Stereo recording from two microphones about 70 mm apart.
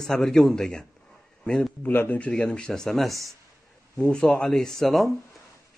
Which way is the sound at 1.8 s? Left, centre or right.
Left.